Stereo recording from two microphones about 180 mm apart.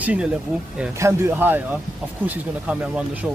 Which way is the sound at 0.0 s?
5° right (ahead or behind).